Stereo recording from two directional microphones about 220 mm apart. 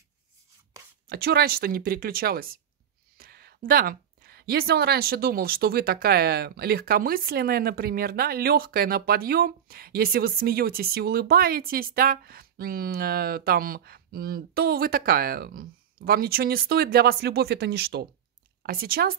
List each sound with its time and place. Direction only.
1.0 s speech: 45° right (ahead or behind)